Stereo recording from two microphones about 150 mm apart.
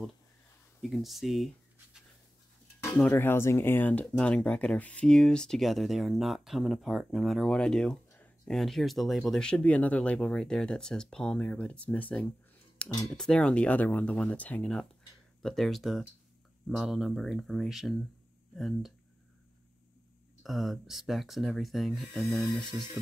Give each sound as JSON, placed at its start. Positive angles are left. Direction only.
{"t": 0.8, "sound": "speech", "side_deg": 0}
{"t": 2.8, "sound": "speech", "side_deg": 15}
{"t": 20.4, "sound": "speech", "side_deg": 0}
{"t": 22.5, "sound": "speech", "side_deg": 30}